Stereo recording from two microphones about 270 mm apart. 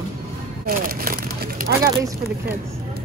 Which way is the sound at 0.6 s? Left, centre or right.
Right.